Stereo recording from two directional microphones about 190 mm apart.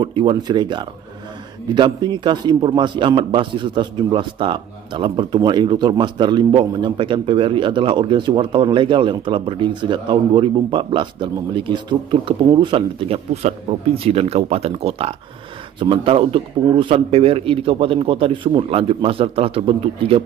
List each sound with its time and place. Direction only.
0.0 s a man's voice: 25° right (ahead or behind)